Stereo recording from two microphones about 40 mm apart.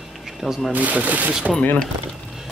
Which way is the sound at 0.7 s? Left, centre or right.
Right.